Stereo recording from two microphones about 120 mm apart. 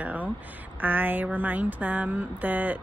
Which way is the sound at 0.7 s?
15° right (ahead or behind).